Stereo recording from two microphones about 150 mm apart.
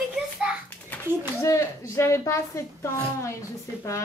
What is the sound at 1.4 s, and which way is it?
A woman's voice, 20° left (ahead or behind).